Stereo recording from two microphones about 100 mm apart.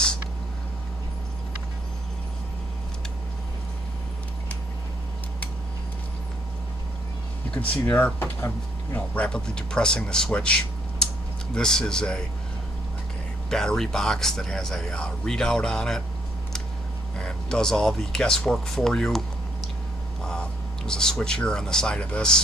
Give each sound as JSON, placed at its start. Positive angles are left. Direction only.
{"t": 7.5, "sound": "speech", "side_deg": 15}
{"t": 9.1, "sound": "speech", "side_deg": 10}
{"t": 13.5, "sound": "speech", "side_deg": 5}
{"t": 17.2, "sound": "speech", "side_deg": 5}
{"t": 20.2, "sound": "speech", "side_deg": 5}